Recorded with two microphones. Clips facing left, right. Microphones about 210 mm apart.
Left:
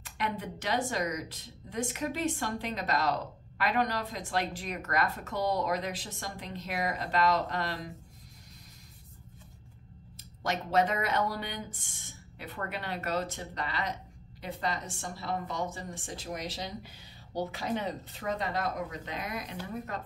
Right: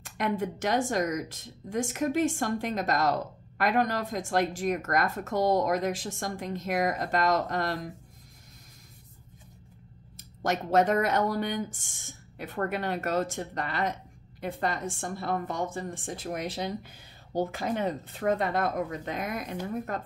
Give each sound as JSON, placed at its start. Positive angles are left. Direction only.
{"t": 0.0, "sound": "a woman's voice", "side_deg": -45}
{"t": 10.1, "sound": "a woman's voice", "side_deg": -45}